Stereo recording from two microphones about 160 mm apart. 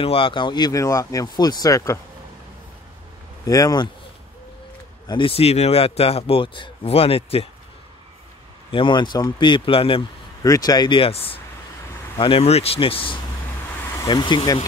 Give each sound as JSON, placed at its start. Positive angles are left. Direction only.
{"t": 0.0, "sound": "speech", "side_deg": 35}
{"t": 3.4, "sound": "speech", "side_deg": 20}
{"t": 5.0, "sound": "speech", "side_deg": 30}
{"t": 8.6, "sound": "speech", "side_deg": 30}
{"t": 10.4, "sound": "speech", "side_deg": 25}